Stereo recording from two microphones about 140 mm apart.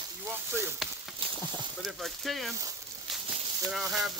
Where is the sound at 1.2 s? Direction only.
40° right (ahead or behind).